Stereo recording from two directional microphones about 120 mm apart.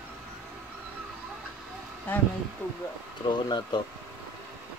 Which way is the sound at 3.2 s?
40° left (ahead or behind).